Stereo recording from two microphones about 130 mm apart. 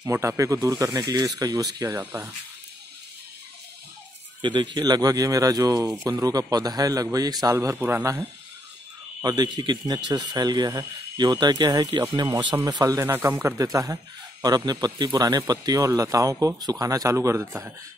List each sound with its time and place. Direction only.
0.0 s speech: 20° right (ahead or behind)
4.4 s speech: 35° right (ahead or behind)
7.5 s speech: 15° right (ahead or behind)
13.0 s speech: 15° right (ahead or behind)
13.6 s speech: 25° right (ahead or behind)